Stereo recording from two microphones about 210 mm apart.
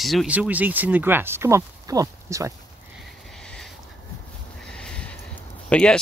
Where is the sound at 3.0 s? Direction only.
Centre (ahead or behind).